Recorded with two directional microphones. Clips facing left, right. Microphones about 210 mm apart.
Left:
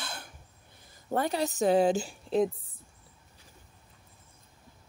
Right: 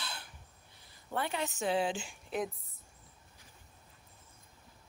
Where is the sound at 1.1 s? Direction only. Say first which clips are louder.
Left 7 dB; 40° left (ahead or behind).